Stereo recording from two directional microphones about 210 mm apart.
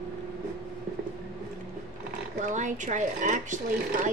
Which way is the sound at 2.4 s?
35° right (ahead or behind).